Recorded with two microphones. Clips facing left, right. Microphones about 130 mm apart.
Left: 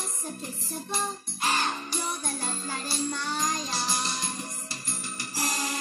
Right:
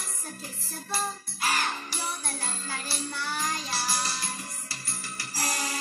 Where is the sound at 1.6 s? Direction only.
15° left (ahead or behind).